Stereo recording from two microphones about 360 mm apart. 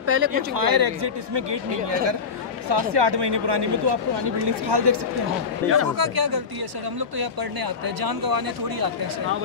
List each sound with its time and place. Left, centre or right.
0.0 s speech: right
0.6 s speech: right
2.7 s speech: right
5.6 s speech: centre
5.9 s speech: right